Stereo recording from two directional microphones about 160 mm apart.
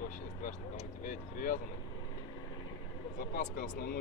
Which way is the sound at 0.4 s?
55° left (ahead or behind).